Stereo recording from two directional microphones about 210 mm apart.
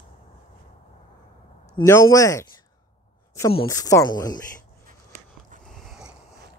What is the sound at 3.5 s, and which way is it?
Speech, 20° left (ahead or behind).